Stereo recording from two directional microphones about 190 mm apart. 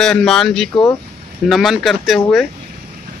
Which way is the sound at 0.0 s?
5° left (ahead or behind).